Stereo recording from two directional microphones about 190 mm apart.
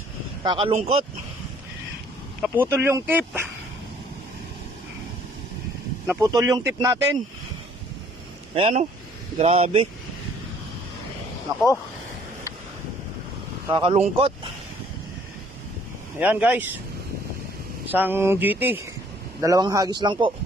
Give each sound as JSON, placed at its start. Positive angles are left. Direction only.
{"t": 0.4, "sound": "speech", "side_deg": -30}
{"t": 2.4, "sound": "speech", "side_deg": -10}
{"t": 6.0, "sound": "speech", "side_deg": -15}
{"t": 8.5, "sound": "speech", "side_deg": -30}
{"t": 11.5, "sound": "a man's voice", "side_deg": -20}
{"t": 13.7, "sound": "a man's voice", "side_deg": -25}
{"t": 16.2, "sound": "speech", "side_deg": -10}
{"t": 17.8, "sound": "a man's voice", "side_deg": -10}